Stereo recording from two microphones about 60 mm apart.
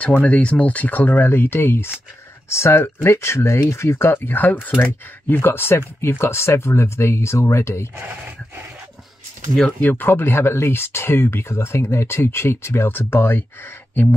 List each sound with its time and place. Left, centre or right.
0.0 s speech: left
2.5 s speech: left
5.3 s speech: left
9.8 s speech: left